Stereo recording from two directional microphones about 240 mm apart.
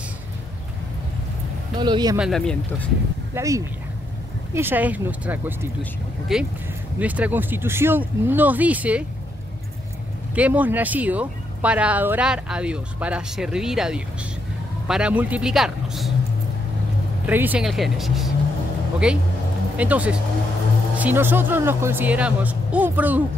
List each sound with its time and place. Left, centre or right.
1.8 s speech: centre
2.1 s speech: centre
3.3 s speech: centre
10.3 s speech: centre
17.3 s speech: centre